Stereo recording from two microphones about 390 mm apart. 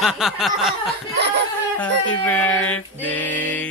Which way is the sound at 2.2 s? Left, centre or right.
Centre.